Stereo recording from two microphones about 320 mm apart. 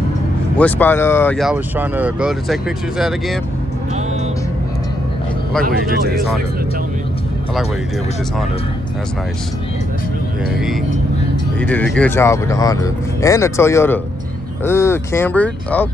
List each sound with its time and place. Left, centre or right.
0.6 s speech: centre
5.6 s speech: right
11.6 s speech: centre